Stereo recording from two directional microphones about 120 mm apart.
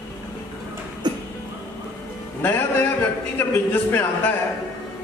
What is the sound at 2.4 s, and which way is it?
A man's voice, 20° left (ahead or behind).